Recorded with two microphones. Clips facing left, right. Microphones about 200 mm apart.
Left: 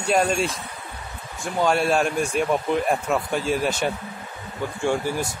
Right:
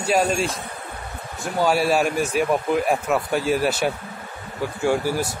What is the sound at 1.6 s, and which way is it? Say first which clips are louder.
Speech: right 1 dB; 5° right (ahead or behind).